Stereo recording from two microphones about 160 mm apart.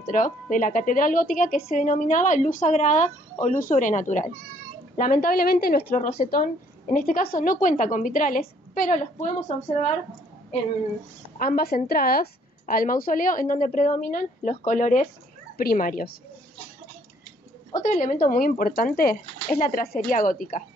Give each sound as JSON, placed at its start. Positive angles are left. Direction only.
{"t": 0.0, "sound": "a woman's voice", "side_deg": 55}
{"t": 11.3, "sound": "a woman's voice", "side_deg": 70}
{"t": 15.5, "sound": "a woman's voice", "side_deg": 65}
{"t": 17.7, "sound": "a woman's voice", "side_deg": 50}
{"t": 20.1, "sound": "a woman's voice", "side_deg": 60}